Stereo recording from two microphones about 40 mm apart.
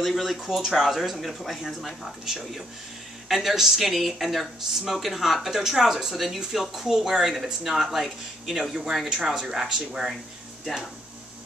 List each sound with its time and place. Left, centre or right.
0.0 s speech: centre